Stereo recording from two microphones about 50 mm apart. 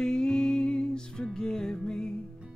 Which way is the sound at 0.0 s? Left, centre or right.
Centre.